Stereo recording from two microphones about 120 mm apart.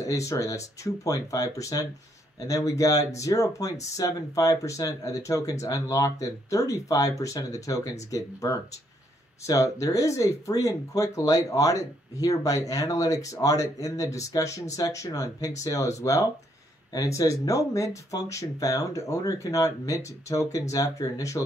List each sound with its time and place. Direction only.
0.0 s speech: 25° left (ahead or behind)